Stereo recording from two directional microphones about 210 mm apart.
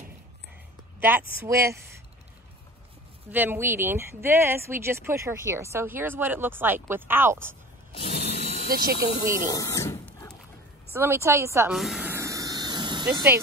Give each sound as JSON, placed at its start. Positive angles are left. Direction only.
{"t": 1.4, "sound": "speech", "side_deg": -15}
{"t": 3.3, "sound": "speech", "side_deg": -10}
{"t": 7.9, "sound": "a sound", "side_deg": 25}
{"t": 8.6, "sound": "speech", "side_deg": -45}
{"t": 9.2, "sound": "speech", "side_deg": 20}
{"t": 10.9, "sound": "speech", "side_deg": -10}
{"t": 11.7, "sound": "a sound", "side_deg": 0}